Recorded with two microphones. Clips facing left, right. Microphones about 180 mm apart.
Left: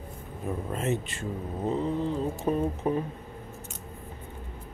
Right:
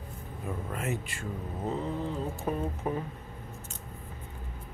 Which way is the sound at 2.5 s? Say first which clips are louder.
Left 5 dB; 20° left (ahead or behind).